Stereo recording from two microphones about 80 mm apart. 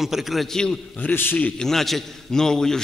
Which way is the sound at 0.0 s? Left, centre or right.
Centre.